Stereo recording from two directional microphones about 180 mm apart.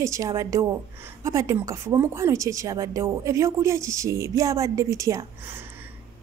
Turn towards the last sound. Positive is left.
turn(degrees=-10)  # may be behind; listen again after turning